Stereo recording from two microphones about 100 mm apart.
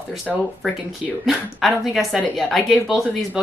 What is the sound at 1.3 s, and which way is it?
Speech, centre (ahead or behind).